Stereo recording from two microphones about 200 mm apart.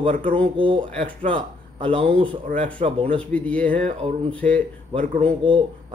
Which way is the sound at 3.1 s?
5° left (ahead or behind).